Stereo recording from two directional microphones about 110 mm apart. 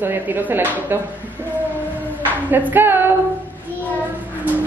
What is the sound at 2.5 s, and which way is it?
Speech, 15° right (ahead or behind).